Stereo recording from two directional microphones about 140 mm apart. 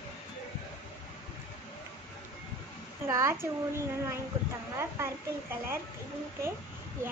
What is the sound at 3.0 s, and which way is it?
Speech, 20° right (ahead or behind).